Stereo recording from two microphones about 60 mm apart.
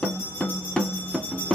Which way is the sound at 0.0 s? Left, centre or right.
Centre.